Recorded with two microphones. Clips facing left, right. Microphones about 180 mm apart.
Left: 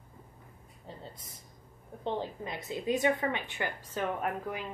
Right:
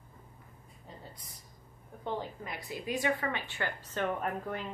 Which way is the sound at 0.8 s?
25° left (ahead or behind).